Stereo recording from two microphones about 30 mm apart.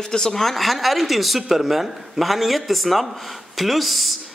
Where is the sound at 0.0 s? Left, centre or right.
Left.